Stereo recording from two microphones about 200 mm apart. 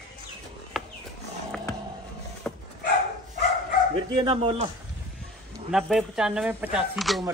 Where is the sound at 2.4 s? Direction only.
5° left (ahead or behind).